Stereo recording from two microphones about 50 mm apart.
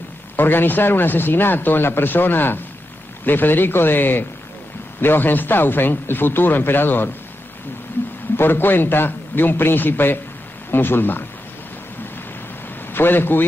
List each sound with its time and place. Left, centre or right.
0.4 s speech: left
8.4 s speech: left
12.9 s a man's voice: left